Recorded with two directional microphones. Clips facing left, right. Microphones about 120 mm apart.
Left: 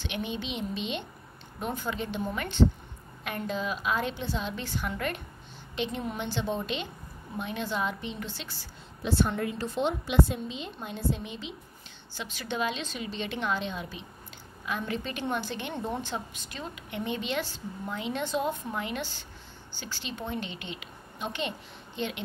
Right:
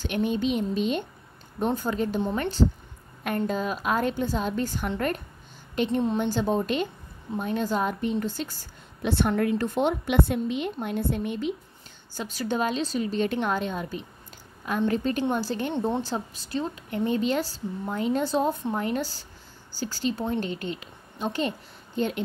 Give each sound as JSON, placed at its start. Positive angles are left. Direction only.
{"t": 0.0, "sound": "a woman's voice", "side_deg": -45}
{"t": 9.0, "sound": "a woman's voice", "side_deg": -60}
{"t": 12.1, "sound": "a woman's voice", "side_deg": -40}